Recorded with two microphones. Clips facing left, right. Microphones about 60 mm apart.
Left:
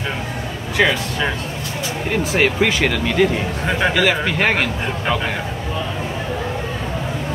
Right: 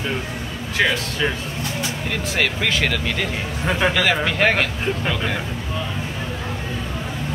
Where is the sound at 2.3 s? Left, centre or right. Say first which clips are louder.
Left 5 dB; centre.